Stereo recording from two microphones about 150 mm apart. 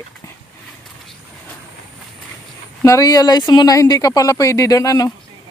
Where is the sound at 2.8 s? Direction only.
20° left (ahead or behind).